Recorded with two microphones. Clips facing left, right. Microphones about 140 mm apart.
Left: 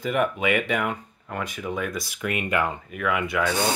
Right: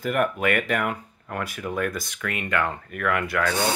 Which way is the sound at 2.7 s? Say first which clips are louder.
Even; centre (ahead or behind).